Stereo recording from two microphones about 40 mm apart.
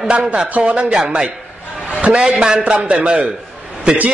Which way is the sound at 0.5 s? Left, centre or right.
Right.